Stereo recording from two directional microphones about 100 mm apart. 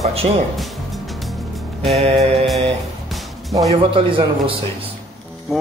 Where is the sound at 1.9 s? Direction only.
85° right.